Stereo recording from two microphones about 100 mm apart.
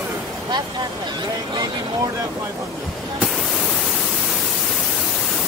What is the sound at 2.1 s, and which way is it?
Speech, 30° right (ahead or behind).